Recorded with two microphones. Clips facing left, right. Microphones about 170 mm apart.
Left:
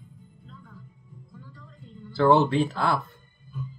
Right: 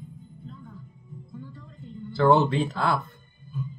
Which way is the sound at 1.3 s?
20° right (ahead or behind).